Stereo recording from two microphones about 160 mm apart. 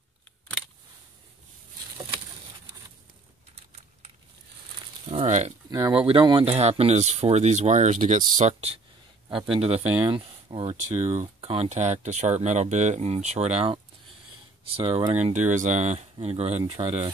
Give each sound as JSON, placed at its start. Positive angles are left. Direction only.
{"t": 5.1, "sound": "speech", "side_deg": -45}
{"t": 5.7, "sound": "speech", "side_deg": -25}
{"t": 15.1, "sound": "speech", "side_deg": -45}